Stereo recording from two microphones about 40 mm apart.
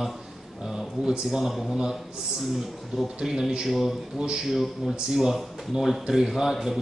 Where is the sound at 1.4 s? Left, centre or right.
Centre.